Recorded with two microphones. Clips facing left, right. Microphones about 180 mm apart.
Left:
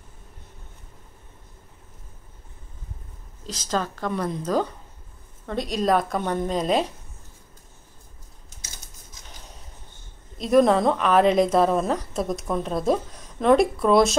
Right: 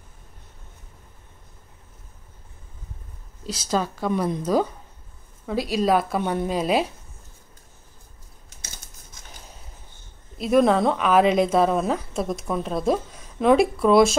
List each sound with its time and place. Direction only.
3.4 s a woman's voice: 10° right (ahead or behind)
10.3 s a woman's voice: 5° right (ahead or behind)